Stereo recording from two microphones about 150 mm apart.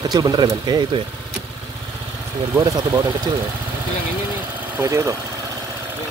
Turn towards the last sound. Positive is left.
turn(degrees=-20)  # may be behind; listen again after turning